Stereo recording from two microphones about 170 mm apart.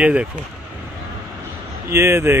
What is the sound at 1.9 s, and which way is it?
Speech, 15° right (ahead or behind).